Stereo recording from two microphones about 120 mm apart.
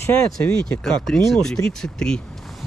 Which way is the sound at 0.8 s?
5° left (ahead or behind).